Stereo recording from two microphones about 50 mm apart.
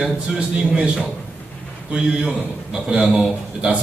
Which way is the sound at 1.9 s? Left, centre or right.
Centre.